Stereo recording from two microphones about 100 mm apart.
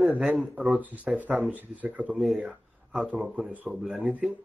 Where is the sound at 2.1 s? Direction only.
5° right (ahead or behind).